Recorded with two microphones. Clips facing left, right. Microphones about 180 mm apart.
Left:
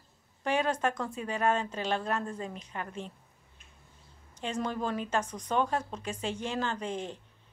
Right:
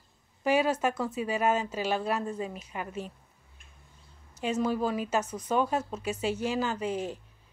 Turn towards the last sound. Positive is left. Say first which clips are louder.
# right 4 dB
turn(degrees=-5)  # may be behind; listen again after turning